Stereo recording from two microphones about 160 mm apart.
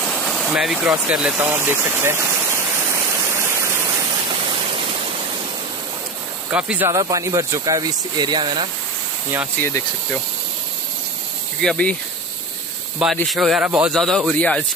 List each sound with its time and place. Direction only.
0.0 s vehicle: 5° left (ahead or behind); by 3.5 s 20° right (ahead or behind)
4.5 s a sound: 35° right (ahead or behind)
6.5 s speech: 5° right (ahead or behind)
6.9 s speech: 20° right (ahead or behind)
11.6 s speech: 5° left (ahead or behind)
13.0 s a man's voice: centre (ahead or behind)
13.9 s a man's voice: 5° left (ahead or behind)